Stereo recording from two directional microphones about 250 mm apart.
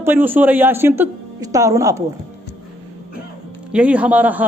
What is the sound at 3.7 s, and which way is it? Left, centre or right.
Speech, centre.